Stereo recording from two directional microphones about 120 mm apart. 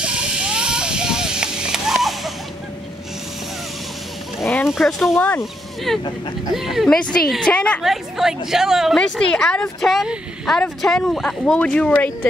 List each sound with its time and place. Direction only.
0.0 s a sound: 5° right (ahead or behind)
4.6 s a woman's voice: centre (ahead or behind)
5.1 s a woman's voice: 15° left (ahead or behind)
5.9 s a woman's voice: centre (ahead or behind)
7.8 s a woman's voice: 5° right (ahead or behind)